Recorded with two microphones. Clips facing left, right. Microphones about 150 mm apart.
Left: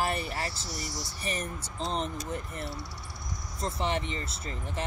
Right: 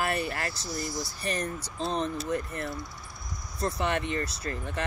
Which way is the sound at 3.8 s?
60° right (ahead or behind).